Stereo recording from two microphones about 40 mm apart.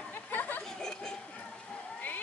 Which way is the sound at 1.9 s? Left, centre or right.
Left.